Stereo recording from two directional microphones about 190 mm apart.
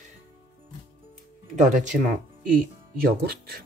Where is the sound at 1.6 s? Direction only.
40° right (ahead or behind).